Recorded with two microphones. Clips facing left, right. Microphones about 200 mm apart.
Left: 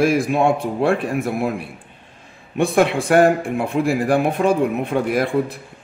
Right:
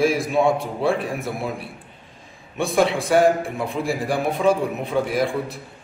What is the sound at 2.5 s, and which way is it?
Speech, 55° left (ahead or behind).